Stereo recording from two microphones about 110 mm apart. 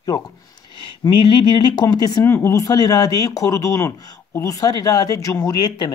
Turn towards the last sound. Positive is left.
turn(degrees=40)  # may be behind; listen again after turning